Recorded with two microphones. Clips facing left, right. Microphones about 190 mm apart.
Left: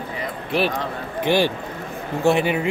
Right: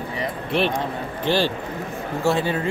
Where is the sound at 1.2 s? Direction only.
15° left (ahead or behind).